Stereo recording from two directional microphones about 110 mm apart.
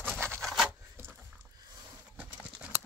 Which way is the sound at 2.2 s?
10° right (ahead or behind).